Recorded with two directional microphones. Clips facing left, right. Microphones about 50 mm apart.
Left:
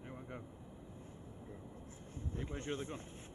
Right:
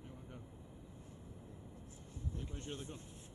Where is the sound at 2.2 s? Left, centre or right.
Left.